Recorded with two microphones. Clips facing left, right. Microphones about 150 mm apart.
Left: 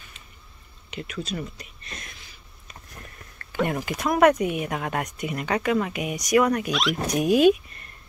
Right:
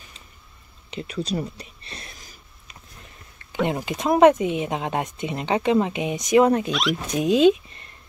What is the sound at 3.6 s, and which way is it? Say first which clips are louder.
Speech: right 3 dB; 20° right (ahead or behind).